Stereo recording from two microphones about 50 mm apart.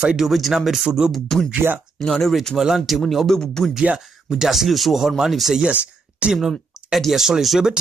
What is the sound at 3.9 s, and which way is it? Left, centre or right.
Speech, centre.